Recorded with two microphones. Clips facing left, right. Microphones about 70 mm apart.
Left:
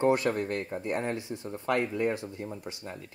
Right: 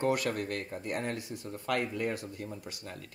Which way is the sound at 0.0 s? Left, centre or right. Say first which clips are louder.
Left 5 dB; left.